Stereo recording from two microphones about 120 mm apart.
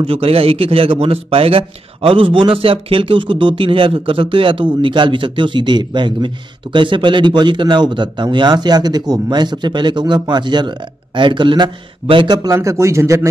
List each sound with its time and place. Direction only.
0.0 s speech: 55° right (ahead or behind)
12.4 s speech: 25° right (ahead or behind)